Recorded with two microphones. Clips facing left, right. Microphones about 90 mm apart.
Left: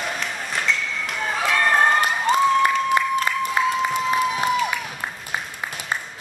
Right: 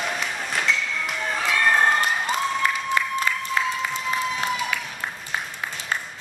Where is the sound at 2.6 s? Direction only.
15° left (ahead or behind).